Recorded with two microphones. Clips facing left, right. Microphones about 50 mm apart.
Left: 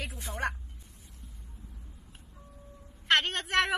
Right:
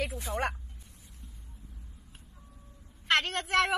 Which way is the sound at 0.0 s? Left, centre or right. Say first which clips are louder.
Right 6 dB; centre.